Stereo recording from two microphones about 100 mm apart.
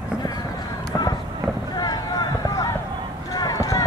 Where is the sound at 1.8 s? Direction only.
40° left (ahead or behind).